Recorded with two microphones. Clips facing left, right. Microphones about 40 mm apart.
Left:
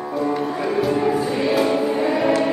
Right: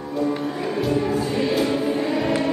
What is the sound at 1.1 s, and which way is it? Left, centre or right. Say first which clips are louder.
Choir: left 3 dB; centre.